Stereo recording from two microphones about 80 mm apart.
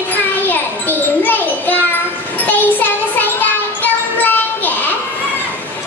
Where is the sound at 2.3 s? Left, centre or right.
Left.